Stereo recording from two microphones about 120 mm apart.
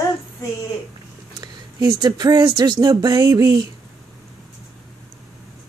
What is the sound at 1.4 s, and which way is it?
Speech, 35° right (ahead or behind).